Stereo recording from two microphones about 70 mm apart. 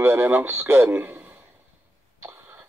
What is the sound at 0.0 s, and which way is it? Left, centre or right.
Speech, right.